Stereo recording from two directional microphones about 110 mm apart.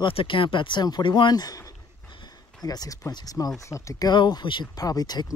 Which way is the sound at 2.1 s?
40° left (ahead or behind).